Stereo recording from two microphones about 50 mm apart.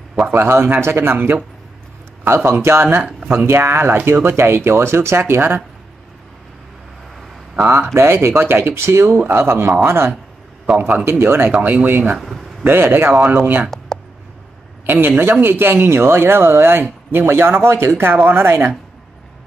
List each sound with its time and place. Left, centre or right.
0.3 s speech: right
3.0 s speech: right
3.3 s speech: right
7.7 s speech: right
10.7 s speech: centre
11.1 s speech: right
11.4 s speech: right
12.2 s speech: centre
12.6 s speech: right
13.7 s a sound: centre
14.9 s speech: right